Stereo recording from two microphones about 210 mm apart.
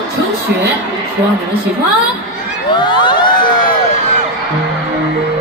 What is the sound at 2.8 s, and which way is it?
Crowd, 20° left (ahead or behind).